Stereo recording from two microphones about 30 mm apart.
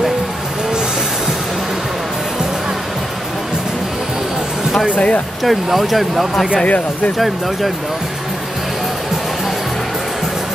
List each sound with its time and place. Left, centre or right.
4.9 s speech: left
5.4 s speech: centre
6.5 s speech: left
7.2 s speech: centre